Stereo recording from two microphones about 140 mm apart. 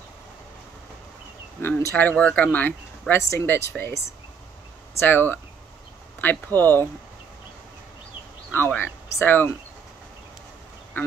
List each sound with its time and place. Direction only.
1.6 s speech: 15° left (ahead or behind)
8.5 s speech: 15° left (ahead or behind)